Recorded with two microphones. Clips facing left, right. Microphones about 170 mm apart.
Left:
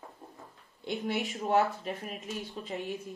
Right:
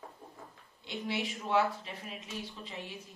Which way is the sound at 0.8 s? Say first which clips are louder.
Left 4 dB; 50° left (ahead or behind).